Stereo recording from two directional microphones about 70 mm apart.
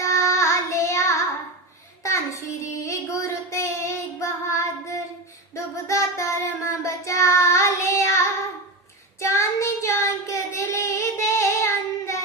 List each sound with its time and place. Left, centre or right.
0.0 s child singing: left